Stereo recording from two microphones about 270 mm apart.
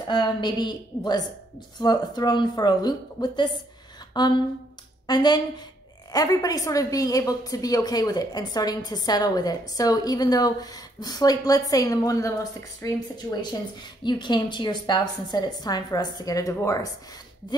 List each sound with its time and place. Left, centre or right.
0.0 s a woman's voice: centre
4.1 s a sound: centre
5.0 s a woman's voice: centre